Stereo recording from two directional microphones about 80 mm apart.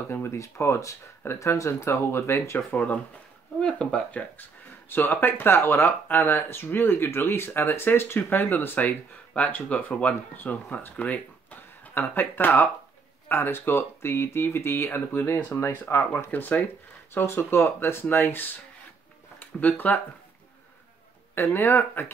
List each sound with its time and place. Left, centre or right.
0.1 s speech: left
2.7 s speech: centre
21.4 s speech: left